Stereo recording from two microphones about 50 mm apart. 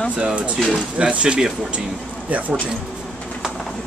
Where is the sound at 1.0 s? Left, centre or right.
Centre.